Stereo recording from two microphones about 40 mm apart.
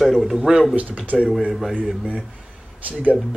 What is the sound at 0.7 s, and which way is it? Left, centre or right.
Speech, right.